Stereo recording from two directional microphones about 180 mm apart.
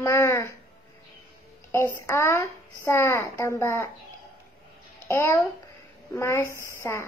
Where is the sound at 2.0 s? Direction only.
15° left (ahead or behind).